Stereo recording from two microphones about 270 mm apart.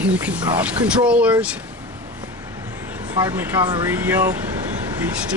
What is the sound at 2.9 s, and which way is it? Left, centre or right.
Speech, centre.